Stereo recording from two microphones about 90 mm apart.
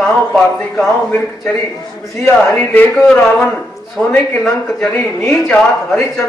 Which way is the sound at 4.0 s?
10° left (ahead or behind).